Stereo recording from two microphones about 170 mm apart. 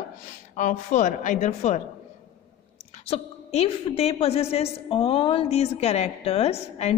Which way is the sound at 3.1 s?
35° left (ahead or behind).